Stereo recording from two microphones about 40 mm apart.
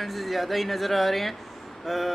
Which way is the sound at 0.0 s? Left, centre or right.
Centre.